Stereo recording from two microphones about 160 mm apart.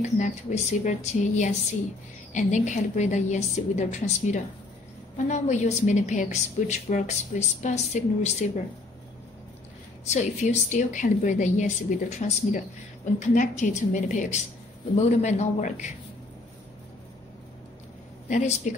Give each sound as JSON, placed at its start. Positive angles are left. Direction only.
{"t": 0.0, "sound": "a woman's voice", "side_deg": 45}
{"t": 10.0, "sound": "a woman's voice", "side_deg": 45}
{"t": 18.3, "sound": "a woman's voice", "side_deg": 50}